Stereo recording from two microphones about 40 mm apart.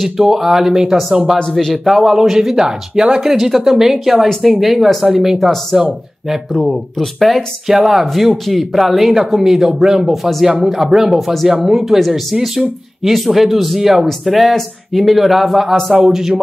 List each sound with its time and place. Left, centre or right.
0.0 s speech: centre
1.4 s speech: centre
1.7 s speech: centre
7.6 s speech: centre
10.1 s speech: centre